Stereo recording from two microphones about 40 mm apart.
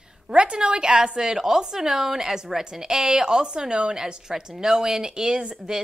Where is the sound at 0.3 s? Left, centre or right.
Right.